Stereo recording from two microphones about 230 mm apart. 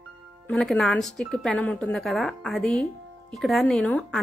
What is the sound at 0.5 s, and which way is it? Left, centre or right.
Speech, centre.